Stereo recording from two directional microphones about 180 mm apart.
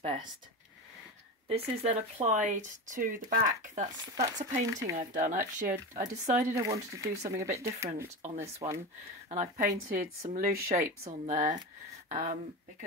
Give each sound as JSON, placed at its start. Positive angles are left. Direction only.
{"t": 1.5, "sound": "speech", "side_deg": -35}
{"t": 6.5, "sound": "speech", "side_deg": -15}
{"t": 7.2, "sound": "speech", "side_deg": -40}
{"t": 7.5, "sound": "speech", "side_deg": -15}
{"t": 9.3, "sound": "speech", "side_deg": -40}
{"t": 11.1, "sound": "speech", "side_deg": -45}